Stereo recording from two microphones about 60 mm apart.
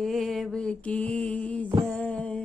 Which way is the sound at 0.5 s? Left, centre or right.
Centre.